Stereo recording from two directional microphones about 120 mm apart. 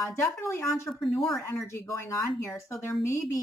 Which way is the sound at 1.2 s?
Centre (ahead or behind).